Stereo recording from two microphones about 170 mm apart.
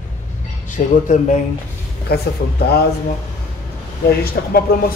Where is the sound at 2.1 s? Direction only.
70° left (ahead or behind).